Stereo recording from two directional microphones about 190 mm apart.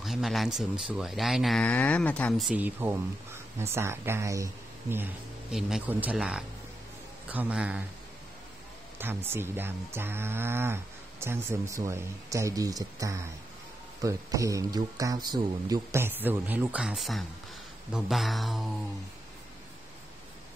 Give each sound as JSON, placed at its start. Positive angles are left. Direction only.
{"t": 0.0, "sound": "speech", "side_deg": 0}
{"t": 7.2, "sound": "cattle", "side_deg": -10}
{"t": 8.9, "sound": "cattle", "side_deg": -10}
{"t": 17.9, "sound": "speech", "side_deg": 0}